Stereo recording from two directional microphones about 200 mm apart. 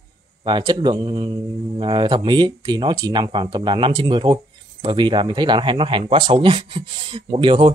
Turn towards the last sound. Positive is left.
turn(degrees=-25)  # may be behind; listen again after turning